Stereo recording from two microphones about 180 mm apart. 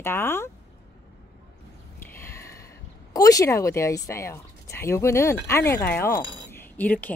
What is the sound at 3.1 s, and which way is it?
Speech, 20° left (ahead or behind).